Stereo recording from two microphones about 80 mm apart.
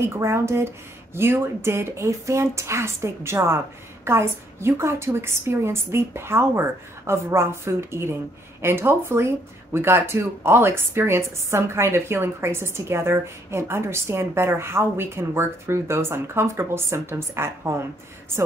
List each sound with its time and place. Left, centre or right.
0.2 s speech: right